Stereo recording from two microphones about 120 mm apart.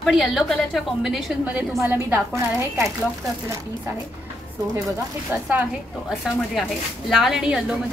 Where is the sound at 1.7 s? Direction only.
20° right (ahead or behind).